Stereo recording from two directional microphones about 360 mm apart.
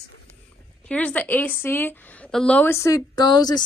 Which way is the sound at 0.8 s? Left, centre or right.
Centre.